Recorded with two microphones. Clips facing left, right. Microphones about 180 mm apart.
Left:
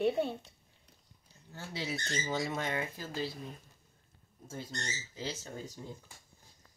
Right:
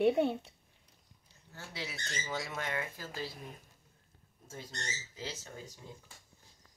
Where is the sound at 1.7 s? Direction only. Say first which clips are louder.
Left 6 dB; 30° left (ahead or behind).